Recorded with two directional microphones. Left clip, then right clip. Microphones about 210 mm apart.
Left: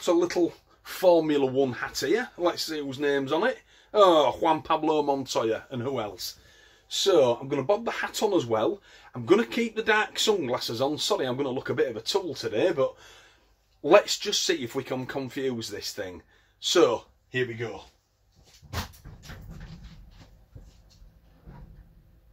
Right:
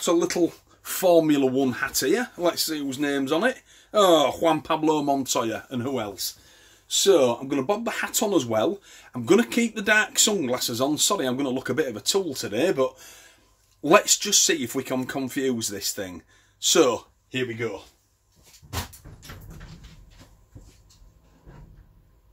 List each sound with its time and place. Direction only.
0.0 s speech: 50° right (ahead or behind)